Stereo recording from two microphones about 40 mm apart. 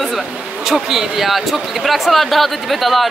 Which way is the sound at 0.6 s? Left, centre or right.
Centre.